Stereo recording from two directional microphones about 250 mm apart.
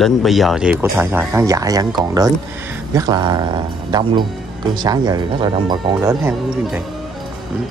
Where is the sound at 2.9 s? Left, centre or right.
Centre.